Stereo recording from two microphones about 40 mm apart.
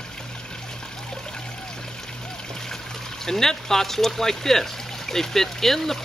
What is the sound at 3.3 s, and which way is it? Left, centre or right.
Speech, centre.